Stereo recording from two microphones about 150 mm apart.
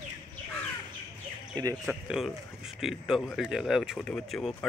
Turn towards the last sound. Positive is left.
turn(degrees=0)  # may be behind; listen again after turning